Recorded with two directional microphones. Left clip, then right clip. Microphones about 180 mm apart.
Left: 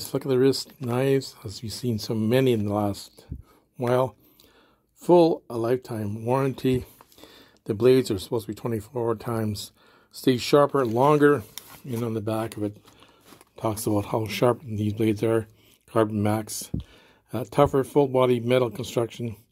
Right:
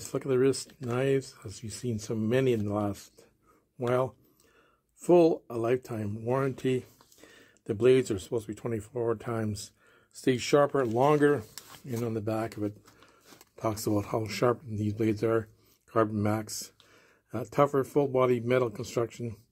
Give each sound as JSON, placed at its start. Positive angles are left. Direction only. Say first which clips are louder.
{"t": 0.0, "sound": "speech", "louder": "left 4 dB", "side_deg": 25}
{"t": 5.0, "sound": "speech", "louder": "left 4 dB", "side_deg": 20}